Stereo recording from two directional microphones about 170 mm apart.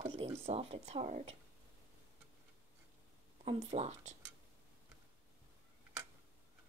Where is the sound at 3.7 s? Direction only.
40° right (ahead or behind).